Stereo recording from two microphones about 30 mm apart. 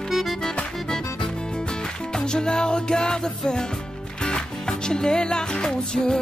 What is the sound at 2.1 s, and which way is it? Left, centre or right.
Music, left.